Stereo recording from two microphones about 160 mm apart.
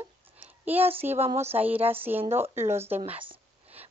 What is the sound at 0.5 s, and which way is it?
Speech, 10° right (ahead or behind).